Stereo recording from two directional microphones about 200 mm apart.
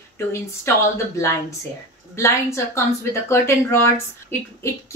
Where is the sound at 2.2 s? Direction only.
15° left (ahead or behind).